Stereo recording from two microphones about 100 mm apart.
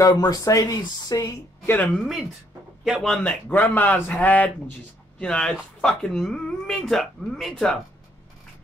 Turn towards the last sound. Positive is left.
turn(degrees=5)  # may be behind; listen again after turning